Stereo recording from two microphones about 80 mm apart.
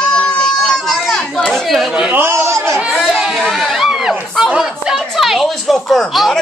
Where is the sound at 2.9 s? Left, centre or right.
Centre.